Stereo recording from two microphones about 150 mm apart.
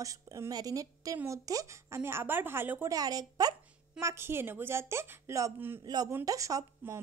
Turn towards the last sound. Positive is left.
turn(degrees=-20)  # may be behind; listen again after turning